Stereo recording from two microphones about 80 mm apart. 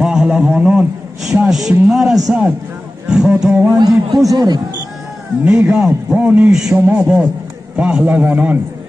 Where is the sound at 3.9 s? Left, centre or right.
Right.